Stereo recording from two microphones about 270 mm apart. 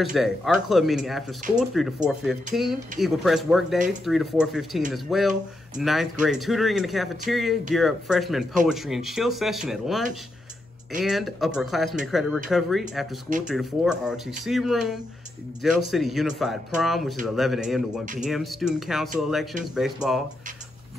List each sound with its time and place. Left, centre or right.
0.0 s speech: centre